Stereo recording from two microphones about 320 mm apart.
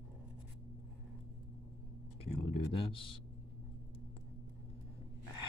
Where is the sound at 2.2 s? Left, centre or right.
Left.